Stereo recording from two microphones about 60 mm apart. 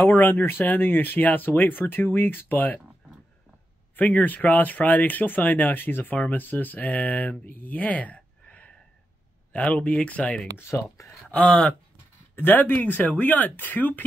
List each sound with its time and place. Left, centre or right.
0.0 s speech: left
3.9 s speech: left
10.7 s speech: left
11.2 s speech: centre
12.4 s speech: left